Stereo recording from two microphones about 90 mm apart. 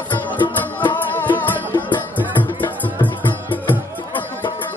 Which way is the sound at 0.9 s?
20° left (ahead or behind).